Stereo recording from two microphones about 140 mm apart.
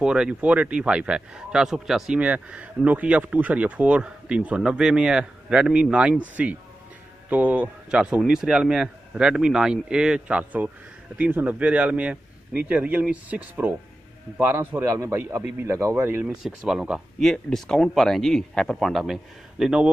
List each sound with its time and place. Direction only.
0.0 s a man's voice: 5° right (ahead or behind)
16.4 s a man's voice: 5° right (ahead or behind)